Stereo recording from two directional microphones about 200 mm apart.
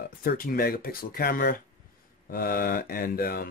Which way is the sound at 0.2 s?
45° left (ahead or behind).